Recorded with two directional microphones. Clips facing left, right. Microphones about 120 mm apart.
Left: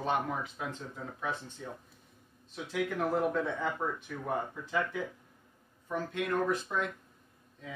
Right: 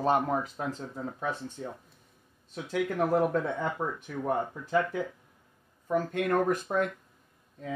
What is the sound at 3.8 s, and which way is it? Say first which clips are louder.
Speech: right 2 dB; 15° right (ahead or behind).